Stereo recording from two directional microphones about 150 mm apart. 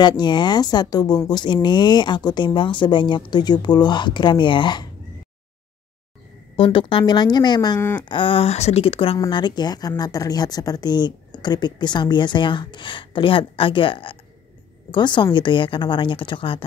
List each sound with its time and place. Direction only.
0.0 s speech: 30° left (ahead or behind)
6.5 s speech: 35° left (ahead or behind)